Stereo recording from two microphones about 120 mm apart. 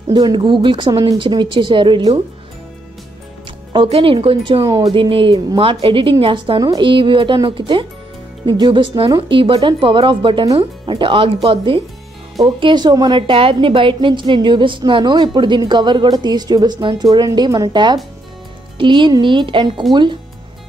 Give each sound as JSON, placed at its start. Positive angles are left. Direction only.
{"t": 0.1, "sound": "a woman's voice", "side_deg": -40}
{"t": 3.7, "sound": "a woman's voice", "side_deg": -45}